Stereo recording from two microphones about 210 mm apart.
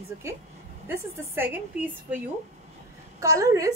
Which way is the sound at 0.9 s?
10° right (ahead or behind).